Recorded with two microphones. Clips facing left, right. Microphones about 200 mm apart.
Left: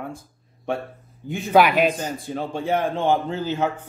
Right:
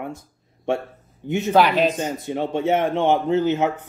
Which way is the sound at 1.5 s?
10° left (ahead or behind).